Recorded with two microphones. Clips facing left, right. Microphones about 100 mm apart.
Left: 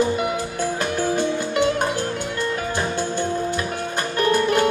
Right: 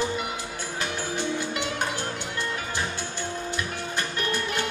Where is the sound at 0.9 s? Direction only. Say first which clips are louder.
Left 7 dB; 50° left (ahead or behind).